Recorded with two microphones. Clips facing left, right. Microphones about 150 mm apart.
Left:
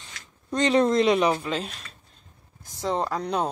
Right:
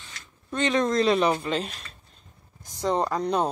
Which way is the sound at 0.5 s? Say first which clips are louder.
Left 3 dB; 30° left (ahead or behind).